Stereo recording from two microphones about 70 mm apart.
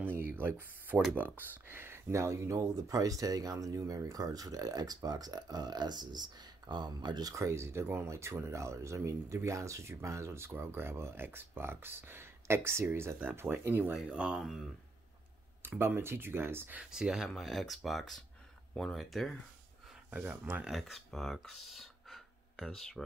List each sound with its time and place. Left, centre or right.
0.0 s speech: right
7.3 s speech: right
13.9 s speech: centre
15.8 s speech: right
16.9 s speech: centre
20.2 s speech: right
20.6 s speech: centre